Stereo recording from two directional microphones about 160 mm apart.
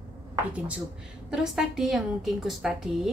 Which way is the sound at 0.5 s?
10° right (ahead or behind).